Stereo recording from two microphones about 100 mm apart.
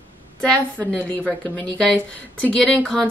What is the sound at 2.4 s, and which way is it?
Speech, 10° left (ahead or behind).